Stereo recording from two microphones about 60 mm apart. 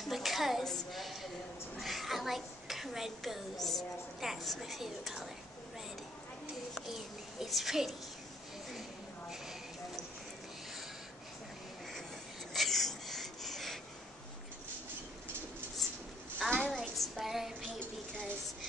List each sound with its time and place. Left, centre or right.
0.0 s a sound: centre
3.6 s a woman's voice: centre
6.7 s a child's voice: centre
12.5 s wheeze: centre
16.4 s child singing: centre